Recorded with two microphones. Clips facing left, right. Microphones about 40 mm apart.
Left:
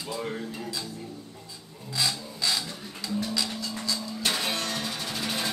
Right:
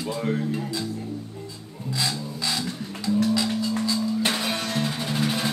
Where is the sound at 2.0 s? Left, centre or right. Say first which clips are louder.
Even; centre.